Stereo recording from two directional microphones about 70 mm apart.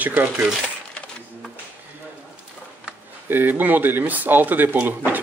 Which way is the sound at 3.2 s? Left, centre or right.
Right.